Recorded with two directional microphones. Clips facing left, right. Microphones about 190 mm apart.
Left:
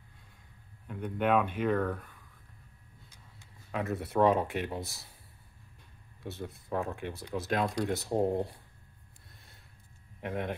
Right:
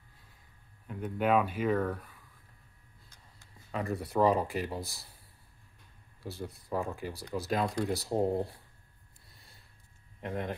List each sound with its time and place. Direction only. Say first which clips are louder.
0.8 s speech: even; centre (ahead or behind)
3.7 s speech: left 1 dB; centre (ahead or behind)
6.2 s speech: even; centre (ahead or behind)
9.3 s snort: left 1 dB; centre (ahead or behind)
10.2 s speech: left 1 dB; centre (ahead or behind)